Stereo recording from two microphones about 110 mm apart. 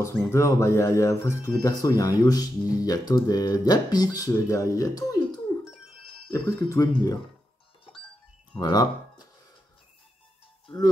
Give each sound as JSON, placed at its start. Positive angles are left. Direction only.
{"t": 0.0, "sound": "speech", "side_deg": 25}
{"t": 8.5, "sound": "speech", "side_deg": 35}